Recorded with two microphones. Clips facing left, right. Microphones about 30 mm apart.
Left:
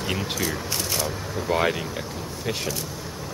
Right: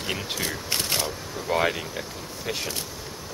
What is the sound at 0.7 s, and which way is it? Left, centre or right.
Speech, right.